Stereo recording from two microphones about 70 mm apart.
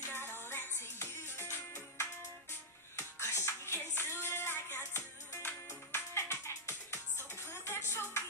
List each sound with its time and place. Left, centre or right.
0.1 s music: left